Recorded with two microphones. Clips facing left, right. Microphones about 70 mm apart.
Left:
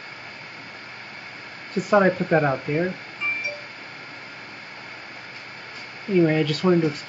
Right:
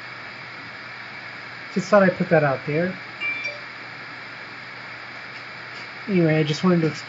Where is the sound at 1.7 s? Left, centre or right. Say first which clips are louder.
Right 2 dB; centre.